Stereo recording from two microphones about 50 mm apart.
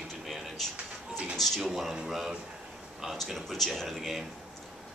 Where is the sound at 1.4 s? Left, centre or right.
Centre.